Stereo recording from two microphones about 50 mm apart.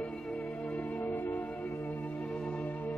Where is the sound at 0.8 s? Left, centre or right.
Left.